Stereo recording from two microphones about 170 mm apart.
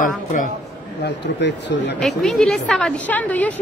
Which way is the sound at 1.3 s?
90° left.